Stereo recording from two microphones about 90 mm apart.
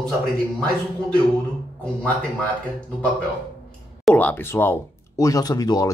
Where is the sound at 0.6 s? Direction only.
15° left (ahead or behind).